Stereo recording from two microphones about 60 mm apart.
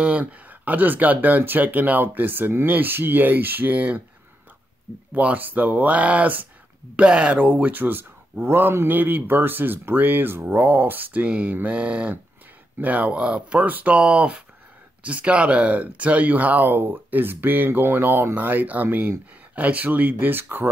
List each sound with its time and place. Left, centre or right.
0.0 s speech: right
5.1 s speech: right